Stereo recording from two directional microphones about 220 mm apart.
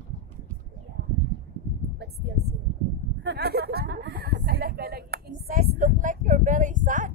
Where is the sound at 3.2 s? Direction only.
50° right (ahead or behind).